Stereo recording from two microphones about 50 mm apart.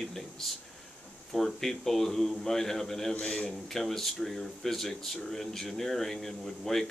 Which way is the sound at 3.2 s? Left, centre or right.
Centre.